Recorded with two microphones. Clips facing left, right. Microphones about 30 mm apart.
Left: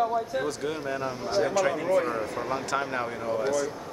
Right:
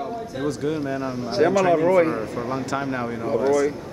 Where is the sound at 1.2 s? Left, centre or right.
Right.